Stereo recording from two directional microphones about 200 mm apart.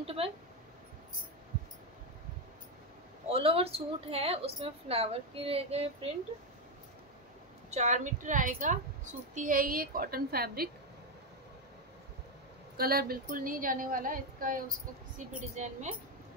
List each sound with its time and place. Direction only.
0.0 s a sound: 30° right (ahead or behind)
3.3 s a woman's voice: 30° right (ahead or behind)
7.7 s a woman's voice: 35° right (ahead or behind)
12.7 s a woman's voice: 50° right (ahead or behind)